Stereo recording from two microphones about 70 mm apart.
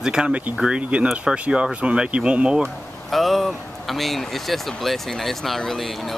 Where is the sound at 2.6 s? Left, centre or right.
Centre.